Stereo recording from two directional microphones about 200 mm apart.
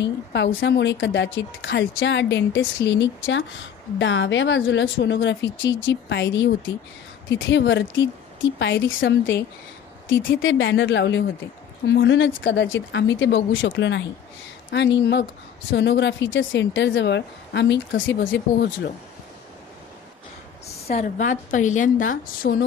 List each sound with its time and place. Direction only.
0.0 s a woman's voice: 60° left (ahead or behind)
20.6 s a woman's voice: 30° left (ahead or behind)